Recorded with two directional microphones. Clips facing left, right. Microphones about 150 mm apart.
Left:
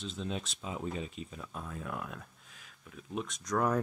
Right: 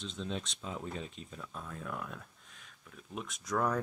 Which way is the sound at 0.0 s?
5° left (ahead or behind).